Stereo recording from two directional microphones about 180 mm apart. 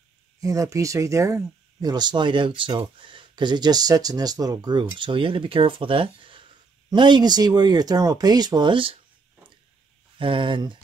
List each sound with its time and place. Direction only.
0.4 s speech: 20° right (ahead or behind)
10.1 s speech: 30° right (ahead or behind)